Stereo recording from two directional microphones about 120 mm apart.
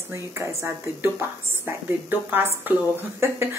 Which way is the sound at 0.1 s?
25° right (ahead or behind).